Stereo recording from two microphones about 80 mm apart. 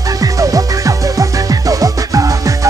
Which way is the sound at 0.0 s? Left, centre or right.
Right.